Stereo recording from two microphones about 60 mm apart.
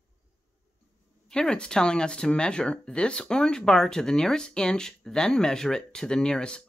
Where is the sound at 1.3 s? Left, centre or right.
Centre.